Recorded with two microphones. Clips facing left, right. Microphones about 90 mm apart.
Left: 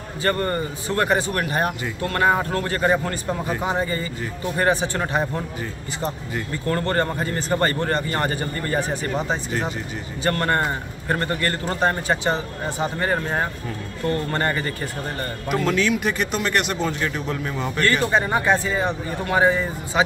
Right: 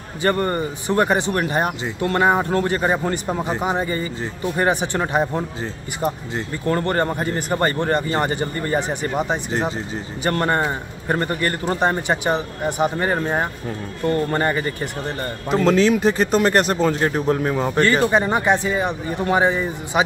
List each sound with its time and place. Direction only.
0.2 s speech: 20° right (ahead or behind)
9.5 s speech: 30° right (ahead or behind)
10.2 s speech: 15° right (ahead or behind)
15.4 s speech: 30° right (ahead or behind)
18.1 s speech: 20° right (ahead or behind)